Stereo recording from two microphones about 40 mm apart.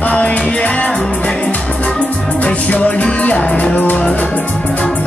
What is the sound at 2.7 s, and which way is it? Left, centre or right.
Music, left.